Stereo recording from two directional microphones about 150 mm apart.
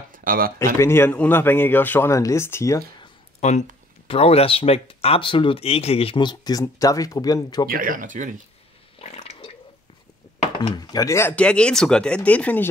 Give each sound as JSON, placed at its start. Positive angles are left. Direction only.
{"t": 0.1, "sound": "a sound", "side_deg": -70}
{"t": 0.7, "sound": "speech", "side_deg": 15}
{"t": 3.3, "sound": "speech", "side_deg": 50}
{"t": 7.7, "sound": "speech", "side_deg": -70}
{"t": 9.0, "sound": "water", "side_deg": 45}
{"t": 10.8, "sound": "speech", "side_deg": 25}